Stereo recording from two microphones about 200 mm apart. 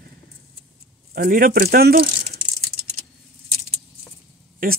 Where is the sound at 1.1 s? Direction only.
45° right (ahead or behind).